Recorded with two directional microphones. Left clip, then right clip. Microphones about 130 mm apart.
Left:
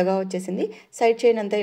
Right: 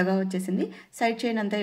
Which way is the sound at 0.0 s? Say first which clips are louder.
Left 4 dB; 40° left (ahead or behind).